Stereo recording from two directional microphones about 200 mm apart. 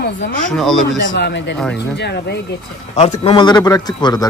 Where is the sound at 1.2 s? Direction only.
60° left (ahead or behind).